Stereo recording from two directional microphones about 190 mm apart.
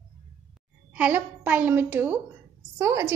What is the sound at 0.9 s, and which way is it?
A woman's voice, 10° right (ahead or behind).